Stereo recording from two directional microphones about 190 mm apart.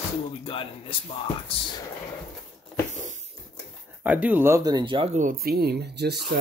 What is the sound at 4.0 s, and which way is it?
Speech, 10° right (ahead or behind).